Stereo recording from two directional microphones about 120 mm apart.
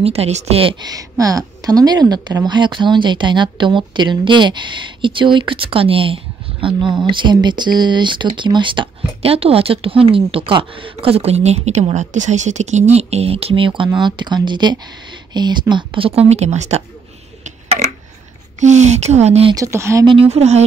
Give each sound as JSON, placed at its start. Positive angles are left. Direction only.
{"t": 0.0, "sound": "a woman's voice", "side_deg": -60}
{"t": 0.8, "sound": "a woman's voice", "side_deg": -30}
{"t": 18.6, "sound": "speech", "side_deg": -80}
{"t": 19.5, "sound": "speech", "side_deg": -25}
{"t": 20.1, "sound": "a woman's voice", "side_deg": -55}